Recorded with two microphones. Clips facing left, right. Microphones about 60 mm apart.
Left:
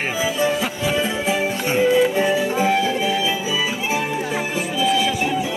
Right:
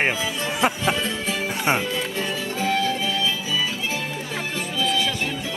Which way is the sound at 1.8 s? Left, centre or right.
Centre.